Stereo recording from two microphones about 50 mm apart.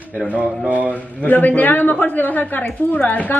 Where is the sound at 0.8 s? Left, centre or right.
Left.